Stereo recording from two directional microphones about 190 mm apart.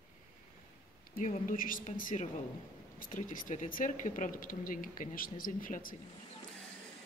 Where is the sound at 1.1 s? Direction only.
45° left (ahead or behind).